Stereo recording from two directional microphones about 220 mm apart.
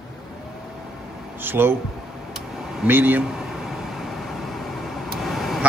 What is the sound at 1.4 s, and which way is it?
Speech, 10° right (ahead or behind).